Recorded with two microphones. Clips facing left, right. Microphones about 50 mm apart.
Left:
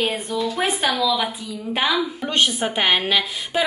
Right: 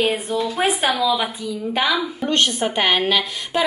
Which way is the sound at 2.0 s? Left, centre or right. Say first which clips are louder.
Right 1 dB; centre.